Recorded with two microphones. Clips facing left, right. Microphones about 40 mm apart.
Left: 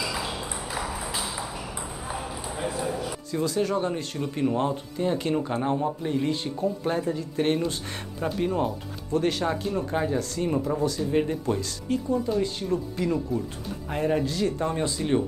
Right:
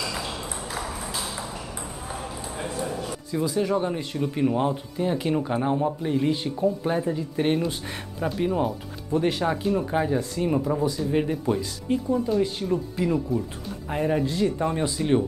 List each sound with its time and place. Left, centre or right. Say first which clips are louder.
3.4 s speech: right 1 dB; centre
9.1 s speech: right 1 dB; centre
14.2 s speech: right 2 dB; right
14.6 s speech: right 2 dB; centre